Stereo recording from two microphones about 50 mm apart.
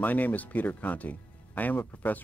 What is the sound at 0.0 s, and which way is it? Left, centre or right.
Speech, left.